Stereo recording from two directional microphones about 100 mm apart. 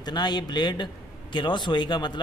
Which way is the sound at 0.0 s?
45° left (ahead or behind).